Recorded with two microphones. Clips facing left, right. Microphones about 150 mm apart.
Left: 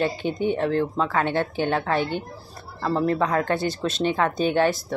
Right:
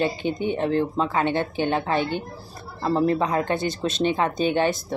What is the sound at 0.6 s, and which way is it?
A woman's voice, 20° right (ahead or behind).